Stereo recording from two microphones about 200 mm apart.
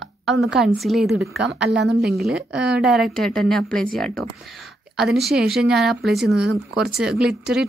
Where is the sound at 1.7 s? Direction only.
55° right (ahead or behind).